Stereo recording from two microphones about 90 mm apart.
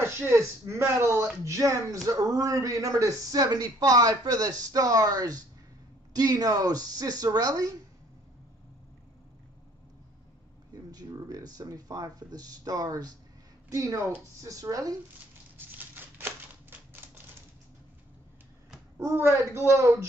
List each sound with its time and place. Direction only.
0.0 s a man's voice: 30° right (ahead or behind)
10.7 s a man's voice: 45° right (ahead or behind)
15.5 s a sound: 20° right (ahead or behind)
18.9 s speech: 30° right (ahead or behind)